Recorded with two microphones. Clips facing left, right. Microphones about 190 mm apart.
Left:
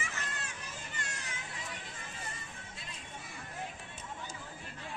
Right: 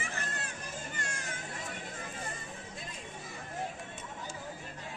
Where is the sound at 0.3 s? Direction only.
40° right (ahead or behind).